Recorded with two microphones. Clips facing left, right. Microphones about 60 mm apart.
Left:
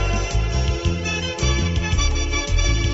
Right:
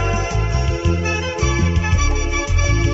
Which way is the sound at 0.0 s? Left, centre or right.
Right.